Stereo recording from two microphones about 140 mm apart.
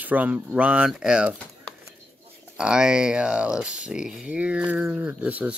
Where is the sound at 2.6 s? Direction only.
5° right (ahead or behind).